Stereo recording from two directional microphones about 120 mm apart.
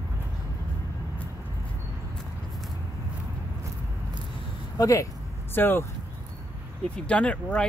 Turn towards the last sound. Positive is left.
turn(degrees=10)  # may be behind; listen again after turning